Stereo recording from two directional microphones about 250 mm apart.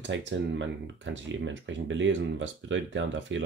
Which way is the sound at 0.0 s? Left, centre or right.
Right.